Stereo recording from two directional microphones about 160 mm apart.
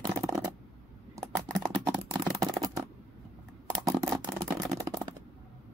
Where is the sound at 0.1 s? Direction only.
20° right (ahead or behind).